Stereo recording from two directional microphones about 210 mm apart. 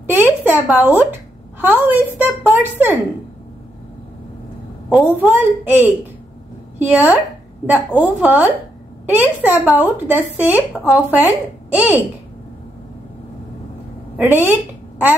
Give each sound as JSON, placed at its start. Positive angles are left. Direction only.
{"t": 0.0, "sound": "a sound", "side_deg": -10}
{"t": 1.6, "sound": "a woman's voice", "side_deg": -10}
{"t": 4.8, "sound": "a woman's voice", "side_deg": -5}
{"t": 14.1, "sound": "a woman's voice", "side_deg": -10}